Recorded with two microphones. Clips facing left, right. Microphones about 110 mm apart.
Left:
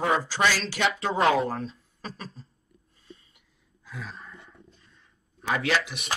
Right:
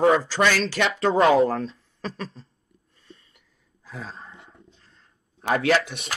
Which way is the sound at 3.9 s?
30° right (ahead or behind).